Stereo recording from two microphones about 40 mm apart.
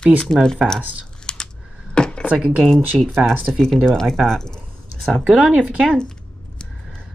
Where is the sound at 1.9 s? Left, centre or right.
Left.